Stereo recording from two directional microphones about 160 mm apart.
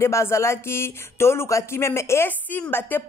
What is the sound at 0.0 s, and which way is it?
A woman's voice, 15° left (ahead or behind).